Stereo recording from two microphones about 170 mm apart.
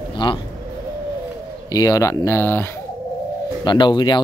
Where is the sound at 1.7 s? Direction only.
20° left (ahead or behind).